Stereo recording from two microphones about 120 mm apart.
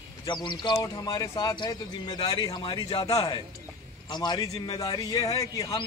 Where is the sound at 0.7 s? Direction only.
30° left (ahead or behind).